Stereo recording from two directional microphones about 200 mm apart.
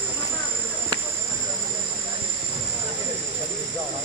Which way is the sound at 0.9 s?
20° right (ahead or behind).